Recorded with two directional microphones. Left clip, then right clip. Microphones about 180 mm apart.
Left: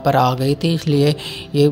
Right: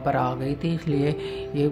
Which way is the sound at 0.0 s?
30° left (ahead or behind).